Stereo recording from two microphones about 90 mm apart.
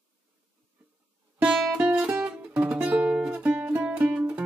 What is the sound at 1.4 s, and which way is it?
Music, 10° right (ahead or behind).